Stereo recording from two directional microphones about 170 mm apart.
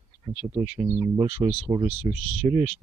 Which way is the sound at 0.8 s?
25° right (ahead or behind).